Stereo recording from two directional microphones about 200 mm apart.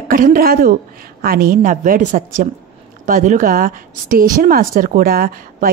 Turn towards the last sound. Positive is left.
turn(degrees=-45)  # may be behind; listen again after turning